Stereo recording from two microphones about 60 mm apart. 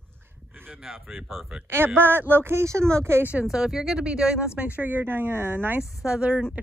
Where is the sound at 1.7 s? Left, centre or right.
Right.